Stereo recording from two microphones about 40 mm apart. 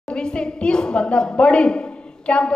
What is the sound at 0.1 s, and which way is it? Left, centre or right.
A woman's voice, left.